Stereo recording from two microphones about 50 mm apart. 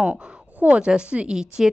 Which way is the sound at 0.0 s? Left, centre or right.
Right.